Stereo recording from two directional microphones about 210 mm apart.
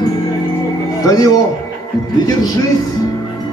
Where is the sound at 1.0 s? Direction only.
15° left (ahead or behind).